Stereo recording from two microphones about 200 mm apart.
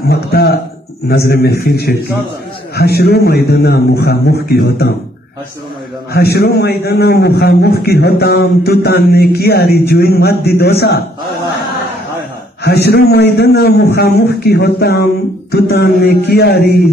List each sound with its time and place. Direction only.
0.1 s a sound: 50° left (ahead or behind)
1.0 s a man's voice: 50° left (ahead or behind)
6.1 s a man's voice: 50° left (ahead or behind)
12.6 s a man's voice: 55° left (ahead or behind)